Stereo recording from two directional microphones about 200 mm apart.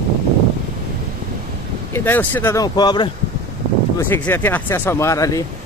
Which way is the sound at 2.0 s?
10° left (ahead or behind).